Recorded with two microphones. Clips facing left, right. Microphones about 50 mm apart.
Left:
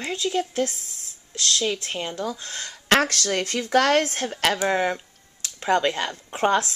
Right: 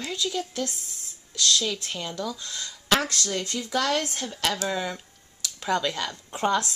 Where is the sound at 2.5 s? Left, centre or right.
Left.